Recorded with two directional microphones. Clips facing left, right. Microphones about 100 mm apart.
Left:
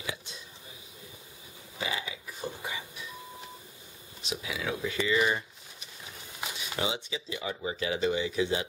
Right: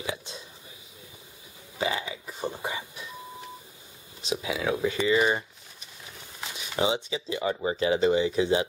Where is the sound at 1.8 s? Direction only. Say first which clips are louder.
Right 6 dB; 35° right (ahead or behind).